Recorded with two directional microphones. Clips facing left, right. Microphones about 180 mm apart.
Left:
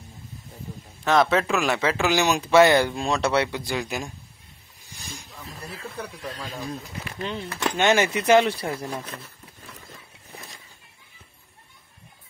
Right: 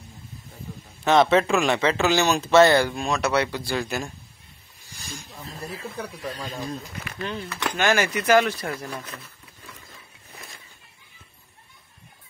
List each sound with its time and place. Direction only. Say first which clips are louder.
1.0 s speech: right 2 dB; centre (ahead or behind); by 3.0 s 20° left (ahead or behind)
3.0 s speech: left 1 dB; 30° left (ahead or behind); by 4.1 s 15° left (ahead or behind)
5.7 s speech: right 1 dB; centre (ahead or behind)
7.2 s speech: even; 20° left (ahead or behind)